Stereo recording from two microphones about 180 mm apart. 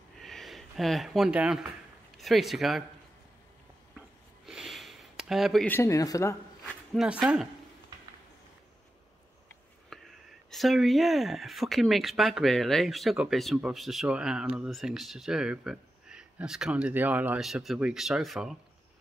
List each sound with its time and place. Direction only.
0.2 s speech: centre (ahead or behind)
4.5 s a sound: centre (ahead or behind)
5.7 s speech: 15° left (ahead or behind)
6.6 s speech: centre (ahead or behind)
9.8 s speech: centre (ahead or behind)